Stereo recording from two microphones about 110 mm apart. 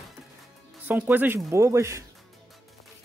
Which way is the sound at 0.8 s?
15° right (ahead or behind).